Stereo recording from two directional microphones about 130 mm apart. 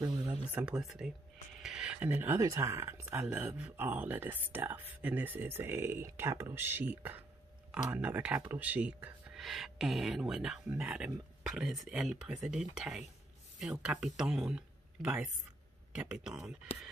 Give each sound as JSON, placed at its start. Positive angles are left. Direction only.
{"t": 0.2, "sound": "speech", "side_deg": -10}